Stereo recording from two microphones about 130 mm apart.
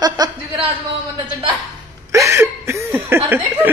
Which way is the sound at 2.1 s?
20° right (ahead or behind).